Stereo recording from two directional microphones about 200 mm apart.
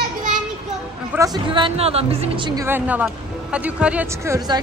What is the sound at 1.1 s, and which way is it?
Speech, 20° right (ahead or behind).